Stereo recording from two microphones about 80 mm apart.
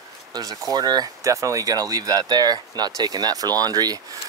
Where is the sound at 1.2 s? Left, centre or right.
Right.